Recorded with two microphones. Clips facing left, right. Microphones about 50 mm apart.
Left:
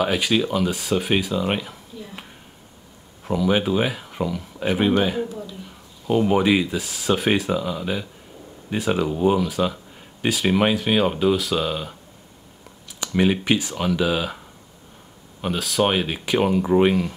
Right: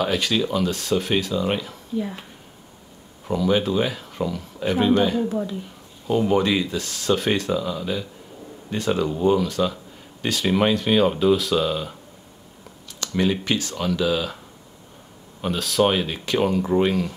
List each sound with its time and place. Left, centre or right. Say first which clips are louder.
0.0 s speech: left 1 dB; centre
3.3 s speech: even; centre
4.6 s speech: right 1 dB; centre
13.0 s speech: left 2 dB; centre
15.4 s speech: right 1 dB; centre